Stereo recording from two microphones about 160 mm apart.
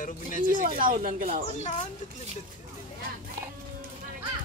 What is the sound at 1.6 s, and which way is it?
Speech, 50° left (ahead or behind).